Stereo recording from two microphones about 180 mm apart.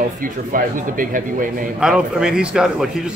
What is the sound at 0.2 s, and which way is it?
Speech, 50° right (ahead or behind).